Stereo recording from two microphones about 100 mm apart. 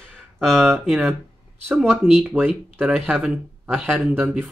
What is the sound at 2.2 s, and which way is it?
Speech, 10° right (ahead or behind).